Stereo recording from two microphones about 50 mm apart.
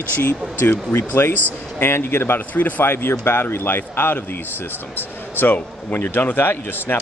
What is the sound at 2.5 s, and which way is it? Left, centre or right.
Speech, left.